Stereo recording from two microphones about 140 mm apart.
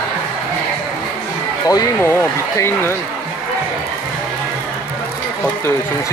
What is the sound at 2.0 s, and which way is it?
Speech, 15° left (ahead or behind).